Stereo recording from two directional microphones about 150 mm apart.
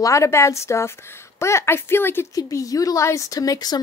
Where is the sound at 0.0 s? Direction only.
20° left (ahead or behind).